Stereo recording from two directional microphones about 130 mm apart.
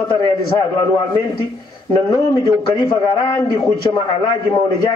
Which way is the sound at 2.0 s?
25° left (ahead or behind).